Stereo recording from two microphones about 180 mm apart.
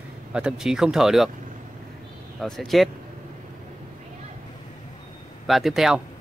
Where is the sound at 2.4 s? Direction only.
Centre (ahead or behind).